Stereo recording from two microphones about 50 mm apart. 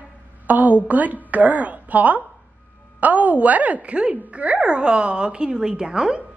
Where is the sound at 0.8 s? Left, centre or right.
Right.